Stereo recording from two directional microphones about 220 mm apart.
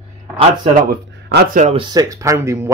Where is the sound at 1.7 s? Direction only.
20° right (ahead or behind).